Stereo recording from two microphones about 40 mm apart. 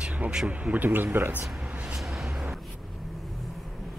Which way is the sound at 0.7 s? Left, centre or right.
Right.